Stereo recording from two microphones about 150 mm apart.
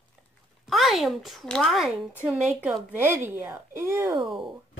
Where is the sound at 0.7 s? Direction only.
Centre (ahead or behind).